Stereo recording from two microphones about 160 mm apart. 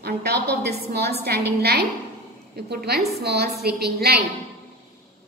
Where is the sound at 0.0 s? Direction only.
85° right.